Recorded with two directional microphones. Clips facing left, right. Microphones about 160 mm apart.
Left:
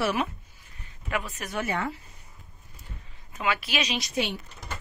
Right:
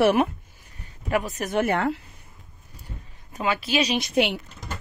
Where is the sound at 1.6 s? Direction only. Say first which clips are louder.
Right 7 dB; 60° right (ahead or behind).